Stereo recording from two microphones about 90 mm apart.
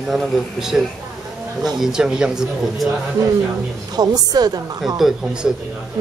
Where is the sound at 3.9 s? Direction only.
50° right (ahead or behind).